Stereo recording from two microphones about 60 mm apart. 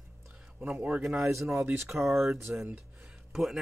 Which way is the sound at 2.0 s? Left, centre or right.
Centre.